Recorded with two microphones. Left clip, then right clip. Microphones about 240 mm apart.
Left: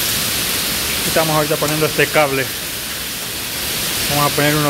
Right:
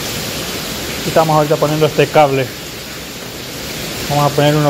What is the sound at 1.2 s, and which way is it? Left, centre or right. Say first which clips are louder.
Speech: right 6 dB; centre.